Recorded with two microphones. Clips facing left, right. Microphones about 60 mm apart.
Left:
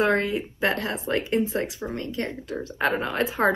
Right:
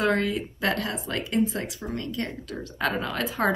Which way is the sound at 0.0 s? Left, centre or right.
Left.